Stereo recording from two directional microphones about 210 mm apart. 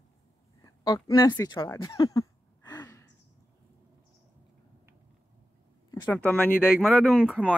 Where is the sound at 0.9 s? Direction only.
20° left (ahead or behind).